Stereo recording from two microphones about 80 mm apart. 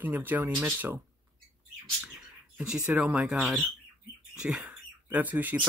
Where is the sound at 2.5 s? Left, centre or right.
Centre.